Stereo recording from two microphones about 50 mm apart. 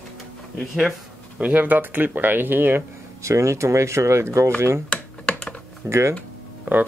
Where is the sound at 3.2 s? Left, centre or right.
Right.